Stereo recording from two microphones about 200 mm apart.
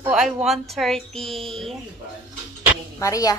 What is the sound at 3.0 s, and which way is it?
Speech, 15° left (ahead or behind).